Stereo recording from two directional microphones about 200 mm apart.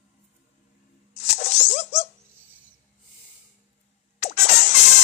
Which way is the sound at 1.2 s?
35° left (ahead or behind).